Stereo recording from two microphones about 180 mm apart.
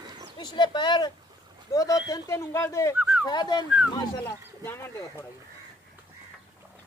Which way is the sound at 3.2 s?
25° left (ahead or behind).